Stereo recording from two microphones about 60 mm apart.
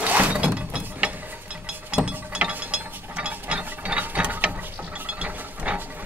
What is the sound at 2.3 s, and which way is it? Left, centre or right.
Mechanisms, right.